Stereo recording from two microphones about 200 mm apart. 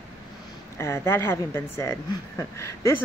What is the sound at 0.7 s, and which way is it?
A woman's voice, 15° left (ahead or behind).